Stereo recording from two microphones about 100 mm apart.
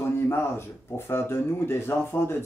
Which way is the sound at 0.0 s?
25° left (ahead or behind).